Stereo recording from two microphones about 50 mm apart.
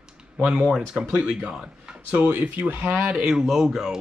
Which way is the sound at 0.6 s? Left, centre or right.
Centre.